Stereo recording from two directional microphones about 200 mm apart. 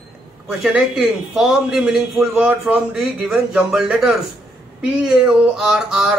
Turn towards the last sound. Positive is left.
turn(degrees=0)  # may be behind; listen again after turning